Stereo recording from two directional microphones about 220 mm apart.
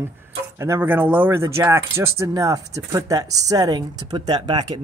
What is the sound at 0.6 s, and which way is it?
Speech, 10° right (ahead or behind).